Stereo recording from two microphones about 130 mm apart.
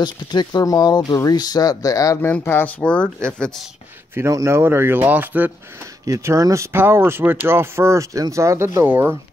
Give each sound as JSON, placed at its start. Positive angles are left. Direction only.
{"t": 0.0, "sound": "speech", "side_deg": 35}
{"t": 2.3, "sound": "speech", "side_deg": 15}
{"t": 4.1, "sound": "speech", "side_deg": -25}
{"t": 6.0, "sound": "speech", "side_deg": -25}